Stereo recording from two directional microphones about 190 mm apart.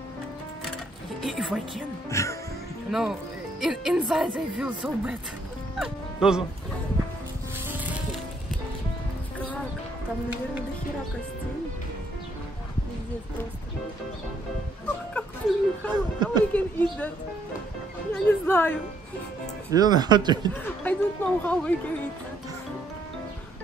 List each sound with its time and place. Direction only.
1.2 s speech: centre (ahead or behind)
2.0 s speech: 15° left (ahead or behind)
2.9 s speech: centre (ahead or behind)
6.2 s speech: 5° right (ahead or behind)
7.6 s music: 10° right (ahead or behind)
15.5 s speech: centre (ahead or behind)
15.9 s speech: 20° right (ahead or behind)
16.5 s speech: 5° left (ahead or behind)
18.1 s speech: 10° left (ahead or behind)
19.7 s speech: 20° right (ahead or behind)
20.5 s speech: 10° left (ahead or behind)